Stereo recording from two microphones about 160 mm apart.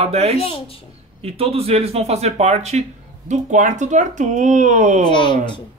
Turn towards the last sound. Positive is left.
turn(degrees=30)  # may be behind; listen again after turning